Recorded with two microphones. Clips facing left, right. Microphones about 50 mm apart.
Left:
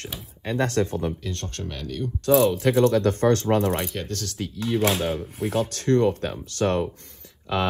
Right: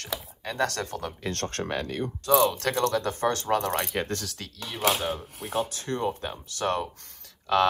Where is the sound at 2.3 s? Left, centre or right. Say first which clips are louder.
Left 4 dB; centre.